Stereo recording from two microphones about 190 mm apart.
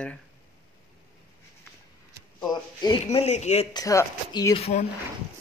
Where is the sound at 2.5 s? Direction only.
20° left (ahead or behind).